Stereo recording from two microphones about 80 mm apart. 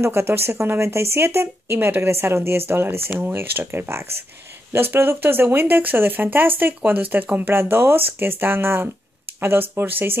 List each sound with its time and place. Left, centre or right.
0.0 s speech: right
3.1 s speech: centre